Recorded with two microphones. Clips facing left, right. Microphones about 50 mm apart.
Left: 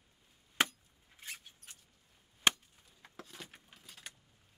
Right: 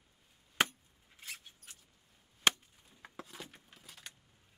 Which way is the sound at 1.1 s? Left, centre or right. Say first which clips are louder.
Even; centre.